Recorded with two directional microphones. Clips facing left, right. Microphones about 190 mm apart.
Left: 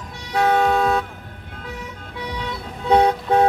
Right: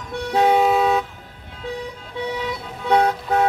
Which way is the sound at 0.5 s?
5° right (ahead or behind).